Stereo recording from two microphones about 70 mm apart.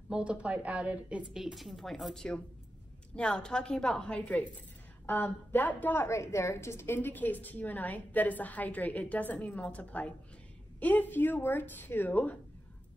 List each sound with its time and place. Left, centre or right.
0.1 s a woman's voice: centre
1.3 s a woman's voice: centre
3.2 s a woman's voice: centre
5.9 s a woman's voice: left